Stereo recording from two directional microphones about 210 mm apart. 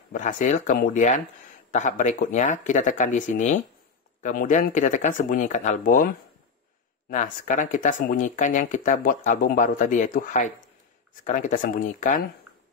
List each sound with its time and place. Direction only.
0.1 s speech: 35° left (ahead or behind)
7.1 s speech: 40° left (ahead or behind)